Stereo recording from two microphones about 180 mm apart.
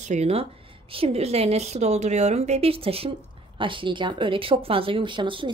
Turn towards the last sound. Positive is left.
turn(degrees=-25)  # may be behind; listen again after turning